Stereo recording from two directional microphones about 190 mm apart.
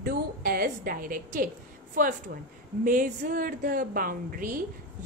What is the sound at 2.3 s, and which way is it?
Speech, 60° right (ahead or behind).